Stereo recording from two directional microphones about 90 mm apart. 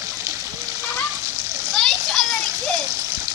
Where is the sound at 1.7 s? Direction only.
5° left (ahead or behind).